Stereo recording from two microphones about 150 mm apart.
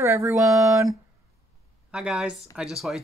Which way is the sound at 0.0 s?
20° right (ahead or behind).